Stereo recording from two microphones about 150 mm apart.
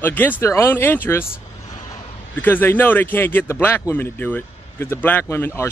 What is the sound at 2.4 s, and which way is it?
Speech, 15° left (ahead or behind).